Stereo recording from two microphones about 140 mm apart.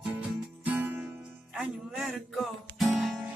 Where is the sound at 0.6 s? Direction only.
10° right (ahead or behind).